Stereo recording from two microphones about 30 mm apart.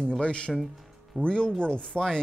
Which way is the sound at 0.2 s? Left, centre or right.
Left.